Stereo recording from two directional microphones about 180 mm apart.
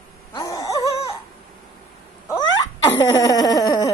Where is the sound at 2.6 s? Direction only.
20° left (ahead or behind).